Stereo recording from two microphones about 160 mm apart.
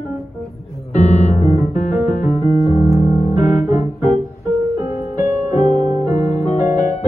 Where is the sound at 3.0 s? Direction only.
40° left (ahead or behind).